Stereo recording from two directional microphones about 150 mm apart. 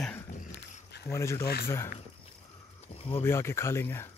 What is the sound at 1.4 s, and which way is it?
Speech, 90° left.